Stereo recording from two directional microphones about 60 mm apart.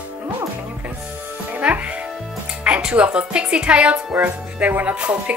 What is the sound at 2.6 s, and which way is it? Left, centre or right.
A woman's voice, centre.